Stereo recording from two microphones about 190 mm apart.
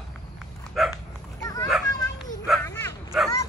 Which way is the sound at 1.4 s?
20° left (ahead or behind).